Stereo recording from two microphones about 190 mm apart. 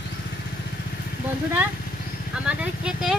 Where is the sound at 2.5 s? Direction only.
5° right (ahead or behind).